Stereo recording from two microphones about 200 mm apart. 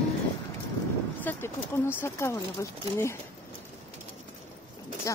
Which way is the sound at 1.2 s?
10° left (ahead or behind).